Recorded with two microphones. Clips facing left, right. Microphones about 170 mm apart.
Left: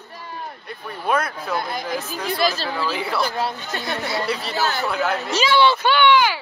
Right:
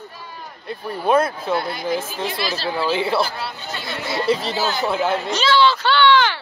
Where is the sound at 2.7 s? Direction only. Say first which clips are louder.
Right 4 dB; 30° right (ahead or behind).